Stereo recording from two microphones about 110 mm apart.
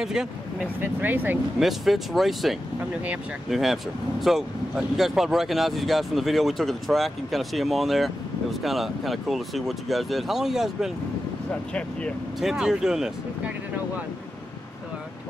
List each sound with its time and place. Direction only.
0.0 s speech: 5° right (ahead or behind)
0.7 s speech: 15° right (ahead or behind)
1.6 s speech: centre (ahead or behind)
12.4 s speech: 5° right (ahead or behind)